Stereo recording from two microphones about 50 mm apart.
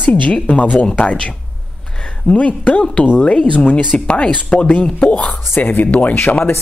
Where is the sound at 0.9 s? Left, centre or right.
Left.